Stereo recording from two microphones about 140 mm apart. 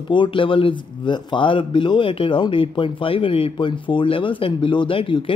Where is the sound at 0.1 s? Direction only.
35° left (ahead or behind).